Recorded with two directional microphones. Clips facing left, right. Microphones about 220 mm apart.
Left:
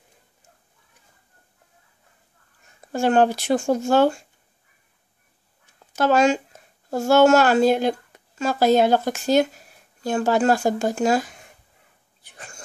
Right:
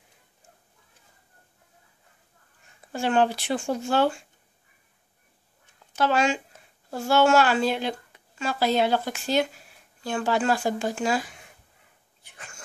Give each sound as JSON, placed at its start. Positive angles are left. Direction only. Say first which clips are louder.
{"t": 2.9, "sound": "speech", "louder": "left 5 dB", "side_deg": 45}
{"t": 5.9, "sound": "speech", "louder": "left 5 dB", "side_deg": 45}
{"t": 12.2, "sound": "a sound", "louder": "left 4 dB", "side_deg": 35}